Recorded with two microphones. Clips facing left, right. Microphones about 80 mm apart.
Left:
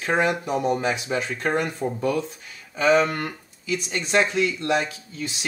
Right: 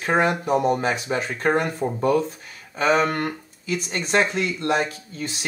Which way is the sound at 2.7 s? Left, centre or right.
Right.